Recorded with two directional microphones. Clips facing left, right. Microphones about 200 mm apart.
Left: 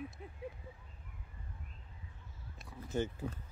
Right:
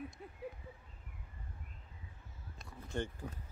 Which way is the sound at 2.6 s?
5° left (ahead or behind).